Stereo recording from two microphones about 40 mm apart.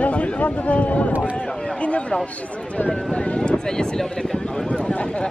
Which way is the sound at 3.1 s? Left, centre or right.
Left.